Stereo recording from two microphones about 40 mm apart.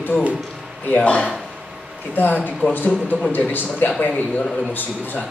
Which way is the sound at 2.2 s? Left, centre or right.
Left.